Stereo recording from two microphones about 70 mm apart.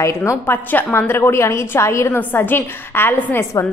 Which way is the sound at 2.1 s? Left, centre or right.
Left.